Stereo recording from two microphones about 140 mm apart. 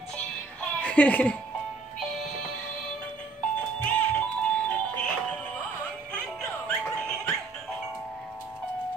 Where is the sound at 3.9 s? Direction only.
10° left (ahead or behind).